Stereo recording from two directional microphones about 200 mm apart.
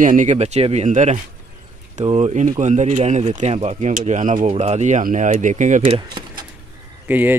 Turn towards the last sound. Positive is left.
turn(degrees=-10)  # may be behind; listen again after turning